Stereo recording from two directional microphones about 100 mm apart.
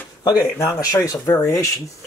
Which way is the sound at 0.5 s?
30° left (ahead or behind).